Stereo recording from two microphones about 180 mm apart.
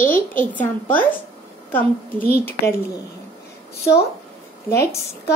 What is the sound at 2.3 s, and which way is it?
Speech, 60° left (ahead or behind).